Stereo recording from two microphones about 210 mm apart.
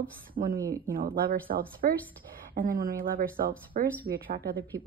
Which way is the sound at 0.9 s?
45° right (ahead or behind).